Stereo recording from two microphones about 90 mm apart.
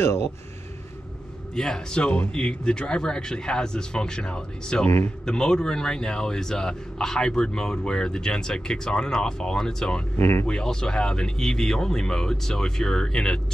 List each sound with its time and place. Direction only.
0.0 s speech: 30° left (ahead or behind)
1.5 s speech: 5° left (ahead or behind)
4.8 s speech: 25° left (ahead or behind)
5.2 s speech: 10° left (ahead or behind)
10.1 s speech: 25° left (ahead or behind)
10.4 s speech: 10° left (ahead or behind)